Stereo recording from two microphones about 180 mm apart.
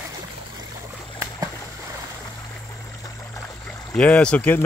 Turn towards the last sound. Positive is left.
turn(degrees=10)  # may be behind; listen again after turning